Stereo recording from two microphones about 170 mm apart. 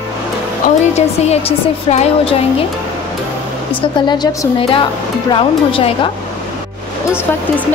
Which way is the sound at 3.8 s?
25° left (ahead or behind).